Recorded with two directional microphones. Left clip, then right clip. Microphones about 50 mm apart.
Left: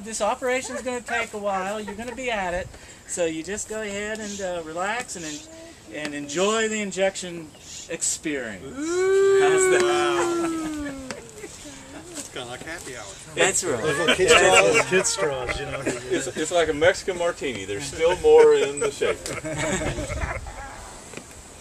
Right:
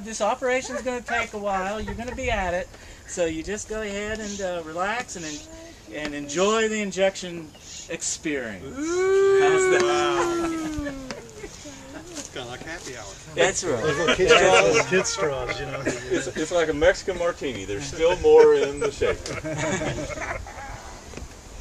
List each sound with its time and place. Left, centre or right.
0.1 s speech: centre
9.1 s livestock: right
9.4 s speech: centre
10.6 s a sound: centre
12.4 s a sound: centre
13.3 s speech: left
13.7 s speech: centre
16.1 s speech: left
19.5 s speech: left